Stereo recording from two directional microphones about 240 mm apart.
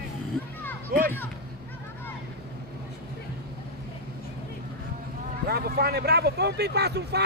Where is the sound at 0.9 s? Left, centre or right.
Right.